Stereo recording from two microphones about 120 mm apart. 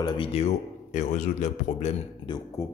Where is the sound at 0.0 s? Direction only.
40° left (ahead or behind).